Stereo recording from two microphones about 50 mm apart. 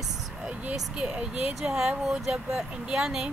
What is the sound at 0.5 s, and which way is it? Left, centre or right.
A woman's voice, centre.